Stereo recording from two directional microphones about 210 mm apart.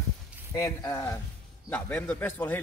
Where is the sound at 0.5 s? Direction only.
15° left (ahead or behind).